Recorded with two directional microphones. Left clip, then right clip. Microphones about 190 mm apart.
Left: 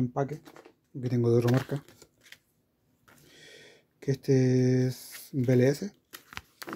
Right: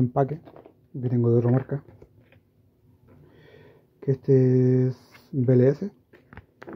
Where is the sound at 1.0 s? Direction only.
5° left (ahead or behind).